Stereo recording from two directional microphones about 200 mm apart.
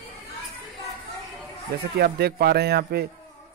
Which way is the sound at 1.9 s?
50° right (ahead or behind).